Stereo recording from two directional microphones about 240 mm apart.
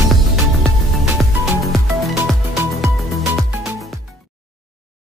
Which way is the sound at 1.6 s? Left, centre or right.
Centre.